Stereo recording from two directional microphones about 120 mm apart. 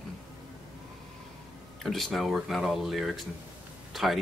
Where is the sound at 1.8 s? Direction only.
Centre (ahead or behind).